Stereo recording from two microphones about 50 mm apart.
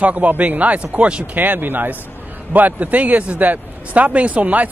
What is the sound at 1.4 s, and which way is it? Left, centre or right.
A man's voice, right.